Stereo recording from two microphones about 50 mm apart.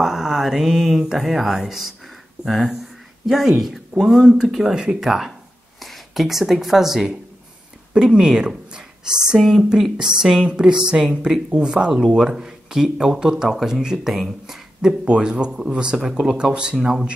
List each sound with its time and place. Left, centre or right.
0.0 s speech: centre
2.4 s speech: centre
7.9 s speech: centre
14.8 s speech: centre